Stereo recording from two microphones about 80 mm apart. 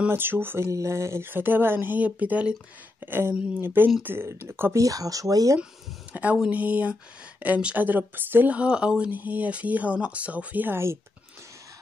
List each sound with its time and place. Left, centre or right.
0.1 s speech: right
0.7 s speech: right
4.7 s speech: right
6.1 s speech: right